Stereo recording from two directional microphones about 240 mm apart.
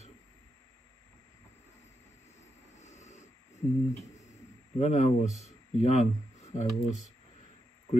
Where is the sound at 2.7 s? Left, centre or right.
Left.